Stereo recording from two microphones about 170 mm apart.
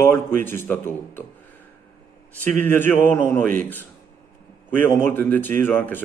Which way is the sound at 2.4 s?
10° left (ahead or behind).